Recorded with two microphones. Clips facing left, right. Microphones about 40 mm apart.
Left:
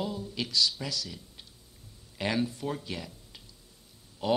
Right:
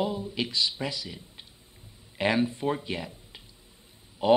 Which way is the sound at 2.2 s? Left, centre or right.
Right.